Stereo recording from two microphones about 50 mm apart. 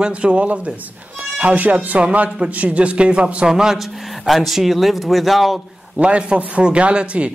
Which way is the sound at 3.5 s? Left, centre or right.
Centre.